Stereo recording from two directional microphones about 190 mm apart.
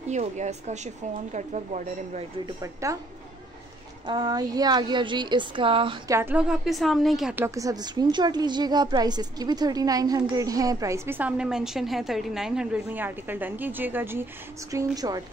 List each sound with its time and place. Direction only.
0.1 s speech: 35° right (ahead or behind)
2.4 s a woman's voice: 15° right (ahead or behind)
4.0 s a woman's voice: 25° right (ahead or behind)
6.1 s a woman's voice: 10° right (ahead or behind)